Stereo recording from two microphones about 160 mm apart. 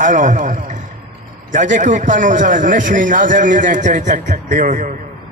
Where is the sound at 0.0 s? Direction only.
50° right (ahead or behind).